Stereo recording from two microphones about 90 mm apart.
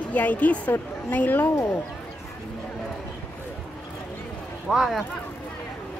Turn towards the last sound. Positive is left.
turn(degrees=0)  # may be behind; listen again after turning